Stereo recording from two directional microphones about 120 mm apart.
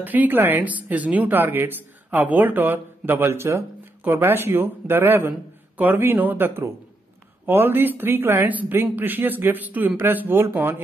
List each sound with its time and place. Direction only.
0.0 s speech: 15° right (ahead or behind)